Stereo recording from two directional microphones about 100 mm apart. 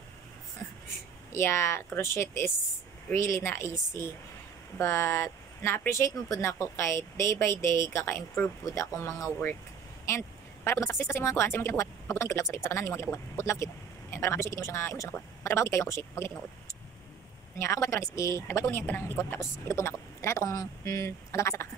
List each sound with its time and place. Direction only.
1.3 s speech: 25° left (ahead or behind)
10.0 s a sound: 25° left (ahead or behind)
11.0 s speech: 25° left (ahead or behind)
17.6 s speech: 25° left (ahead or behind)